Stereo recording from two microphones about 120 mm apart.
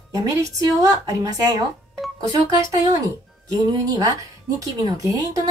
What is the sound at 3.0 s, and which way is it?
A woman's voice, 30° right (ahead or behind).